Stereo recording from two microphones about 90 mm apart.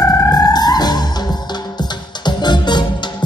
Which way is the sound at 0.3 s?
45° left (ahead or behind).